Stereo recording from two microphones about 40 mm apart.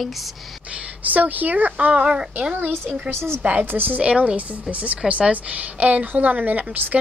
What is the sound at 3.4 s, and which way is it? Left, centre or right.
A woman's voice, right.